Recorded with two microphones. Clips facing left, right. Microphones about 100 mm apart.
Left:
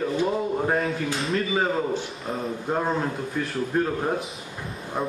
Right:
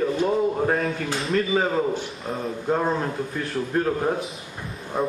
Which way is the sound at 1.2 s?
Centre (ahead or behind).